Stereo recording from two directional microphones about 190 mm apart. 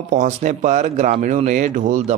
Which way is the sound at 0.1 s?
40° right (ahead or behind).